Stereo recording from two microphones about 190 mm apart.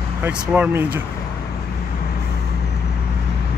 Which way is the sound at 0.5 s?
10° right (ahead or behind).